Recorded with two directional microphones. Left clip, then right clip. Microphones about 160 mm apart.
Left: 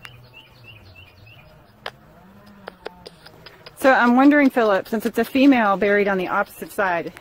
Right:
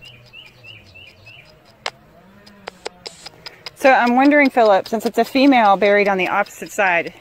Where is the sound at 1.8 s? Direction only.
40° right (ahead or behind).